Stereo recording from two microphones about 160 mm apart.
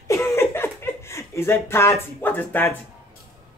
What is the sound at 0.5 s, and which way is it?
Speech, 15° left (ahead or behind).